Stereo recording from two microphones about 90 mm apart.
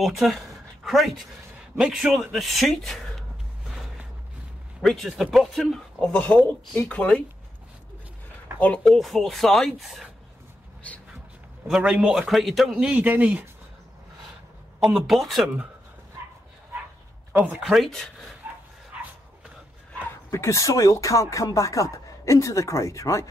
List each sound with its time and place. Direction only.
0.0 s speech: centre (ahead or behind)
4.8 s speech: centre (ahead or behind)
6.1 s speech: 15° left (ahead or behind)
8.5 s speech: 15° left (ahead or behind); by 10.0 s centre (ahead or behind)
10.8 s a sound: 15° left (ahead or behind)
11.6 s a man's voice: 10° right (ahead or behind)
14.8 s speech: 5° right (ahead or behind)
17.3 s speech: 15° right (ahead or behind)
17.6 s speech: centre (ahead or behind)
18.4 s dog: 15° right (ahead or behind)
20.1 s speech: 30° left (ahead or behind)